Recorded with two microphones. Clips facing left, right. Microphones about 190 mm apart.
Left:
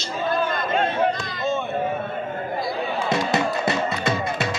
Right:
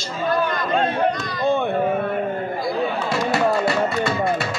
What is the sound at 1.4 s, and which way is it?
Chop, 55° right (ahead or behind).